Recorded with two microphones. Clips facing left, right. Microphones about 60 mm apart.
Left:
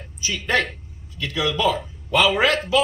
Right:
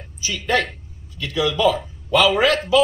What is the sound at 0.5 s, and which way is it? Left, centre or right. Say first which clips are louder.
A man's voice: right 1 dB; left.